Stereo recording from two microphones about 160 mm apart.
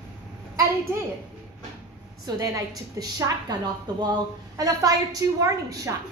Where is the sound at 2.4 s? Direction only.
20° right (ahead or behind).